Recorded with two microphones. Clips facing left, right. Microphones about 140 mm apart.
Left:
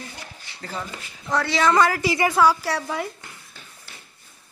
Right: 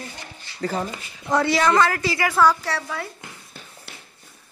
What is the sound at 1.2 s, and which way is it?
Speech, 15° right (ahead or behind).